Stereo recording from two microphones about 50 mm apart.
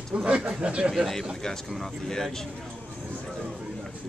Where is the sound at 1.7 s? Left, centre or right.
Centre.